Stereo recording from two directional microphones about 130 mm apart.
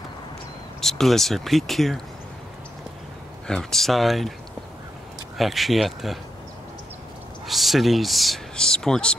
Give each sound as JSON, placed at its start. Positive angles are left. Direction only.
{"t": 0.7, "sound": "speech", "side_deg": 5}
{"t": 3.4, "sound": "speech", "side_deg": 5}
{"t": 5.4, "sound": "speech", "side_deg": 0}
{"t": 7.4, "sound": "speech", "side_deg": 0}